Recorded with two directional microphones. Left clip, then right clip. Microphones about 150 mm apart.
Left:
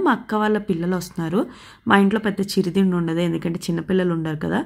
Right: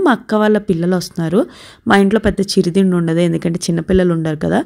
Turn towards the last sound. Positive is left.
turn(degrees=-40)  # may be behind; listen again after turning